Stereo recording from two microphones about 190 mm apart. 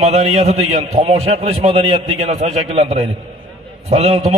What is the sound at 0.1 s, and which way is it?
A man's voice, 35° right (ahead or behind).